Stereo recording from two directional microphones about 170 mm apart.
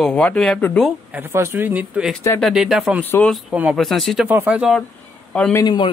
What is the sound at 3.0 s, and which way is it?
Speech, 10° left (ahead or behind).